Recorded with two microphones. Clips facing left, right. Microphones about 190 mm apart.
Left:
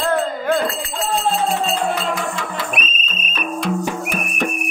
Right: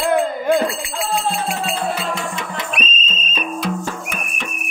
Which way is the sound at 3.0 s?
60° left (ahead or behind).